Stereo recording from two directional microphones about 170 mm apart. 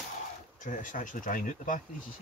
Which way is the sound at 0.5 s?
50° left (ahead or behind).